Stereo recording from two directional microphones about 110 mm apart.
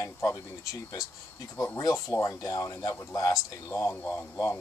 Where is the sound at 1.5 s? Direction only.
30° left (ahead or behind).